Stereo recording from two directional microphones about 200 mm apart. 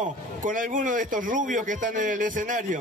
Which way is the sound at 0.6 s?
40° right (ahead or behind).